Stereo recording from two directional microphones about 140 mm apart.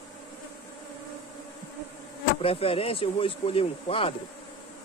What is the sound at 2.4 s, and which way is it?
Speech, 40° left (ahead or behind).